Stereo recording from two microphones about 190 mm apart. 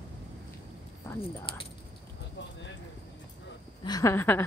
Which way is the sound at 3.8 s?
15° left (ahead or behind).